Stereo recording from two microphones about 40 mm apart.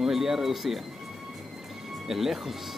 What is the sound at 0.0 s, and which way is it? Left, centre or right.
Speech, centre.